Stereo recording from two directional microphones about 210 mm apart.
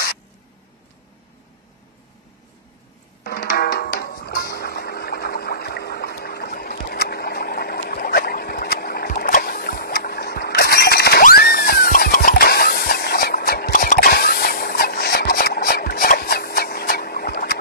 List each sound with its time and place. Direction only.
3.3 s music: 45° left (ahead or behind)